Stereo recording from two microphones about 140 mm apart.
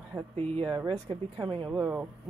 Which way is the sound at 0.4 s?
45° right (ahead or behind).